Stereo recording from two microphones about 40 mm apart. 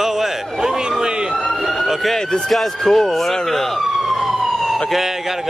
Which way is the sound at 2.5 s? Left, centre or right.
Centre.